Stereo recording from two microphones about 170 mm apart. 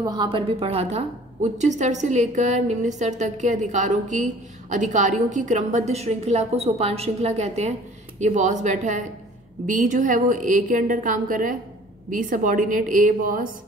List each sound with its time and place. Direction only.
0.0 s a woman's voice: 25° right (ahead or behind); by 13.5 s 55° right (ahead or behind)